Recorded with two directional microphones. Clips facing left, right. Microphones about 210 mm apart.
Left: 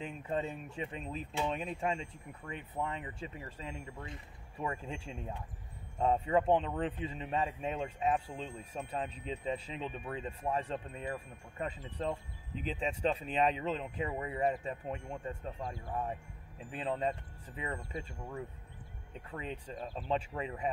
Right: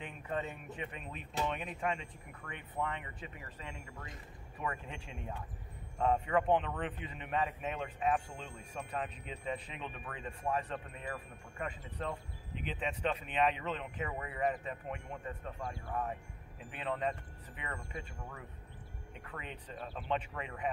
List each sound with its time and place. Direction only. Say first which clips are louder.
0.0 s a man's voice: left 3 dB; 25° left (ahead or behind)